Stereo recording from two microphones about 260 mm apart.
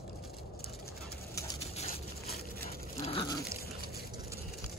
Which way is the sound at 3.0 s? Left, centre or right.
Left.